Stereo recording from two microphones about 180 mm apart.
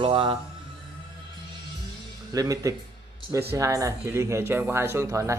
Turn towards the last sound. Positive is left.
turn(degrees=-15)  # may be behind; listen again after turning